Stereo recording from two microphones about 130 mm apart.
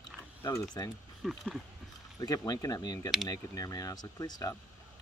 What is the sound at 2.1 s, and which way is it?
Speech, 30° left (ahead or behind).